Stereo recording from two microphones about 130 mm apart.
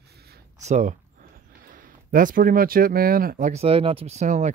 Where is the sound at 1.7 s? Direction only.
90° right.